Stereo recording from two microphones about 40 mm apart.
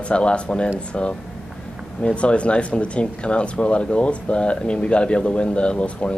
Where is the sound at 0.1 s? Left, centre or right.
Left.